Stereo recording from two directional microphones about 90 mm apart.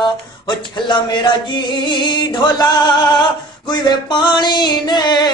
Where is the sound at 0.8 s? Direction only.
60° left (ahead or behind).